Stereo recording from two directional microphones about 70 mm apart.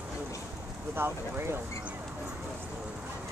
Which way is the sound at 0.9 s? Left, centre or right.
Right.